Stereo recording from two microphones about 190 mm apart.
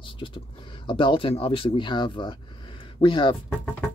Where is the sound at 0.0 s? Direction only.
25° left (ahead or behind).